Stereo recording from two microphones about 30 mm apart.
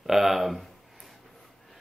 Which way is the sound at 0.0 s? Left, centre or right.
Centre.